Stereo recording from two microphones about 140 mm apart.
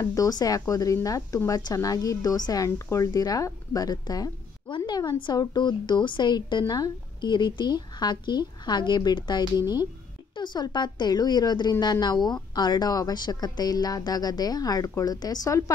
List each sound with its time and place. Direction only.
0.0 s a woman's voice: 25° left (ahead or behind)